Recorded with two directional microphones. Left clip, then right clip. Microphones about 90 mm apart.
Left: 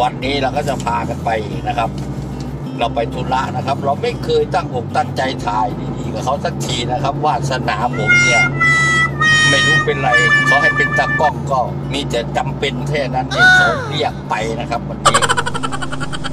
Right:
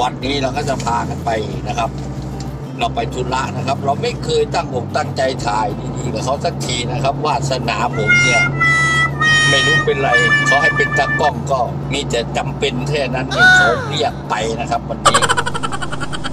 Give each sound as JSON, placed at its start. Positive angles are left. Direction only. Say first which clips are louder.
{"t": 0.0, "sound": "speech", "louder": "left 2 dB", "side_deg": -30}
{"t": 8.1, "sound": "music", "louder": "left 1 dB", "side_deg": 0}
{"t": 10.1, "sound": "speech", "louder": "left 2 dB", "side_deg": 0}
{"t": 11.1, "sound": "speech", "louder": "left 1 dB", "side_deg": -35}
{"t": 13.3, "sound": "speech", "louder": "even", "side_deg": 0}
{"t": 14.0, "sound": "speech", "louder": "left 1 dB", "side_deg": -35}
{"t": 15.0, "sound": "a sound", "louder": "even", "side_deg": 0}